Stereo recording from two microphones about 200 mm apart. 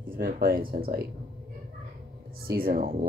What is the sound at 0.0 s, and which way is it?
Speech, 45° right (ahead or behind).